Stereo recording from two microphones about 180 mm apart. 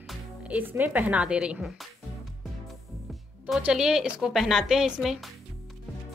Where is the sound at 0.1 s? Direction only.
10° right (ahead or behind).